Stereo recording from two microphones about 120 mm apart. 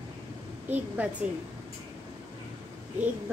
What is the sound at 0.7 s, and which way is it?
Speech, 10° right (ahead or behind).